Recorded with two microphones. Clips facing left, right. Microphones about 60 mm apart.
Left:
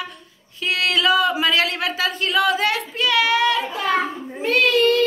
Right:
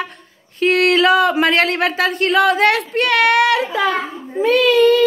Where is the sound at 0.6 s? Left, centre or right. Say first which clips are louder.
Right 7 dB; right.